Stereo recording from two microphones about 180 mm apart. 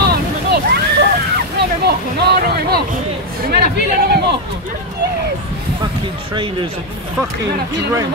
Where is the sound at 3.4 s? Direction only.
60° right (ahead or behind).